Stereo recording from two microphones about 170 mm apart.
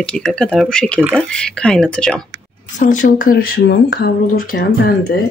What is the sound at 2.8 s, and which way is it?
Speech, 50° left (ahead or behind).